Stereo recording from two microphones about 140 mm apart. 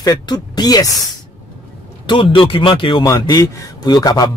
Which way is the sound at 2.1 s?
35° left (ahead or behind).